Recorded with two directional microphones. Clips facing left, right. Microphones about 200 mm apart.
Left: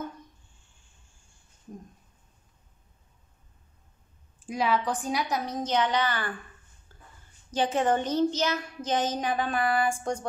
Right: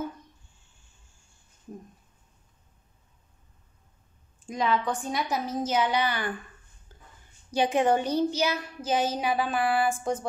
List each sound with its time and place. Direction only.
4.5 s a woman's voice: 5° left (ahead or behind); by 6.3 s 10° right (ahead or behind)
6.9 s a sound: 20° right (ahead or behind)
7.5 s a child's voice: 10° right (ahead or behind)